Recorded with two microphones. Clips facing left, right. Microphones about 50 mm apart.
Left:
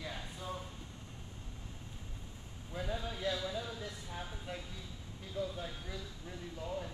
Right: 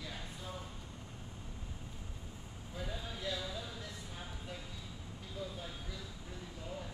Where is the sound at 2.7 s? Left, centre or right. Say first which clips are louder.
Left 4 dB; centre.